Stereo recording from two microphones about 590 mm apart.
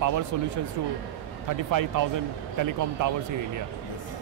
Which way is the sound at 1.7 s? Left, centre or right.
Right.